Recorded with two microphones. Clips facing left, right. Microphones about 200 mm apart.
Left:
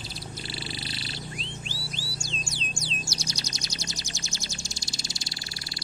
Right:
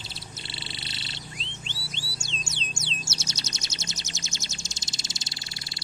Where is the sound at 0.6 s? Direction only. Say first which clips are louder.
Left 5 dB; 25° right (ahead or behind).